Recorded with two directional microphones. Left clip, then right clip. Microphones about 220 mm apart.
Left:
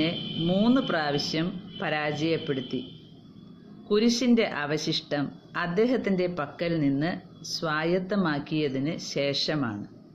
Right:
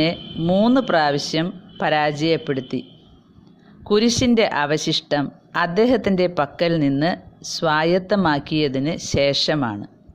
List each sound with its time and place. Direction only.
0.0 s speech: 40° right (ahead or behind)
3.9 s speech: 45° right (ahead or behind)